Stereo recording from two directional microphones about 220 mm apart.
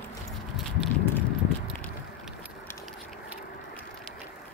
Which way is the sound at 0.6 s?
Centre (ahead or behind).